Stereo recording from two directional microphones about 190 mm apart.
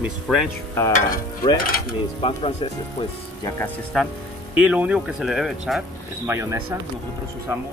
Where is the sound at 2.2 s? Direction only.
30° left (ahead or behind).